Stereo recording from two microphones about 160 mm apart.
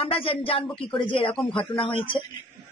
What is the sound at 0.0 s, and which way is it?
A man's voice, 35° left (ahead or behind).